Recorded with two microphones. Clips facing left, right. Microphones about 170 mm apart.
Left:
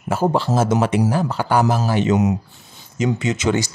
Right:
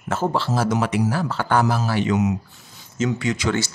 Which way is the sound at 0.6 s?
25° left (ahead or behind).